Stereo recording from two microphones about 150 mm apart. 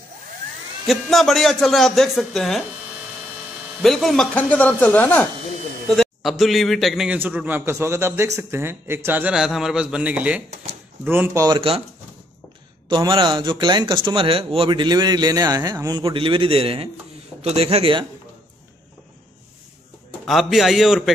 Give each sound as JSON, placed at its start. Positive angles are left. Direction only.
{"t": 0.8, "sound": "speech", "side_deg": 0}
{"t": 3.8, "sound": "speech", "side_deg": 0}
{"t": 5.9, "sound": "a man's voice", "side_deg": 0}
{"t": 10.5, "sound": "speech", "side_deg": -50}
{"t": 11.1, "sound": "a man's voice", "side_deg": -15}
{"t": 11.4, "sound": "speech", "side_deg": -35}
{"t": 12.8, "sound": "speech", "side_deg": -30}
{"t": 20.2, "sound": "speech", "side_deg": 0}